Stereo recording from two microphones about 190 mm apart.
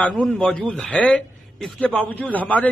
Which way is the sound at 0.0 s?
Centre (ahead or behind).